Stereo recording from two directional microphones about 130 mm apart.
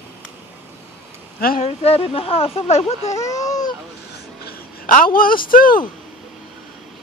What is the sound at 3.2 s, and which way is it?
Speech, 25° left (ahead or behind).